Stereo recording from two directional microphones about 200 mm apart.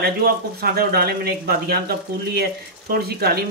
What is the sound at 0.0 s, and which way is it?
Speech, 50° right (ahead or behind).